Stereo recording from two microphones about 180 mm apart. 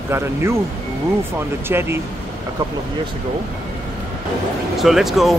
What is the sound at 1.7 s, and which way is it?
Speech, 15° right (ahead or behind).